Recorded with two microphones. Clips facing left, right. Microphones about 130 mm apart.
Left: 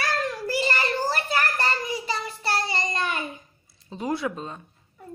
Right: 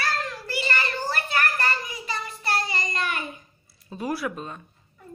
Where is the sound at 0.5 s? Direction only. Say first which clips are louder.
Left 2 dB; 35° left (ahead or behind).